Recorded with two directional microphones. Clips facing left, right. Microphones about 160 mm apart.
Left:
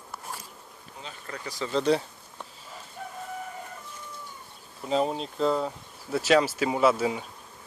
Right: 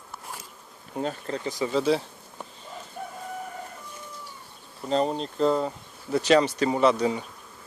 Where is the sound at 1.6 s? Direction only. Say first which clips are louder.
Even; 5° right (ahead or behind).